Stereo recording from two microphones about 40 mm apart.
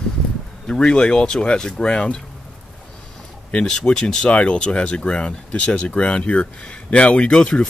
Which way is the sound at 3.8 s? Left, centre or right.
Left.